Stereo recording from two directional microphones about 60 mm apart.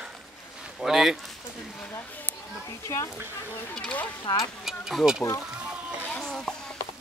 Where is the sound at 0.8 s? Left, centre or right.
Centre.